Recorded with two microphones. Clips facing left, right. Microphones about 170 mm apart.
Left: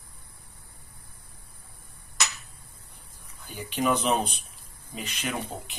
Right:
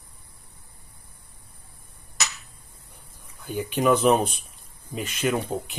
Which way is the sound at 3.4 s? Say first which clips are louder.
Right 5 dB; 50° right (ahead or behind).